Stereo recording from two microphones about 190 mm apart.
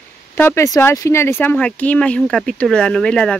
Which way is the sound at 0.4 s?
15° left (ahead or behind).